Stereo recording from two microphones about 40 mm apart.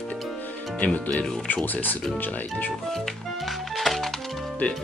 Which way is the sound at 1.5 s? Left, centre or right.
Left.